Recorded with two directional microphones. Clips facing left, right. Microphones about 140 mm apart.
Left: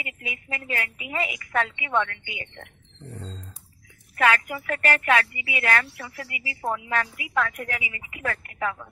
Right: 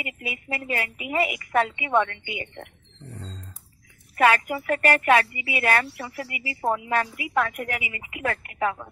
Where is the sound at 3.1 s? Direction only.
Centre (ahead or behind).